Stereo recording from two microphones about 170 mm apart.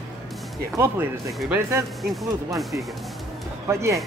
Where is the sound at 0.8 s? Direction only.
15° right (ahead or behind).